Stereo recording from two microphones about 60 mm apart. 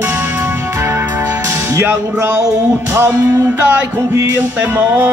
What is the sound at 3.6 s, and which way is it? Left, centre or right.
Music, right.